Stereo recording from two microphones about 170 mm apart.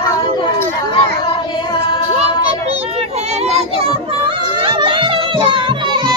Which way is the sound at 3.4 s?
35° right (ahead or behind).